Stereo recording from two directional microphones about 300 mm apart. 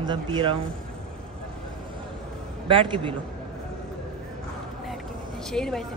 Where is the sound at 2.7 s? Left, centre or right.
Centre.